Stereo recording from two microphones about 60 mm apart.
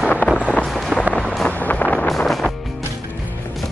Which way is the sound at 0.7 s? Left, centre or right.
Centre.